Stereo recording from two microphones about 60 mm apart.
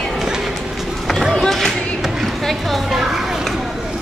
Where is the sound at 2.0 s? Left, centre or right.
Centre.